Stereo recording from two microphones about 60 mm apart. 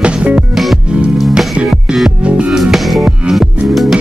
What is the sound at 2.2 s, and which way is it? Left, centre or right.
Music, right.